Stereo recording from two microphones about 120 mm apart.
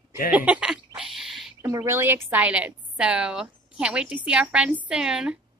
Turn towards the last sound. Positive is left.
turn(degrees=-5)  # may be behind; listen again after turning